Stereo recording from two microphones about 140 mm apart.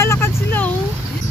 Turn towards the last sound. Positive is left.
turn(degrees=15)  # may be behind; listen again after turning